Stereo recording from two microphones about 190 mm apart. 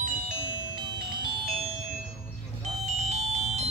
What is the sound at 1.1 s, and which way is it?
Music, 25° right (ahead or behind).